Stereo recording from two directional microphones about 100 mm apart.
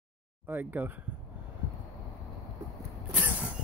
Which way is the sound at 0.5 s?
20° right (ahead or behind).